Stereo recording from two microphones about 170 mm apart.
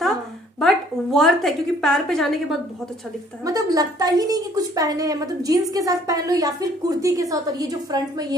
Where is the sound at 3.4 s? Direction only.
20° right (ahead or behind).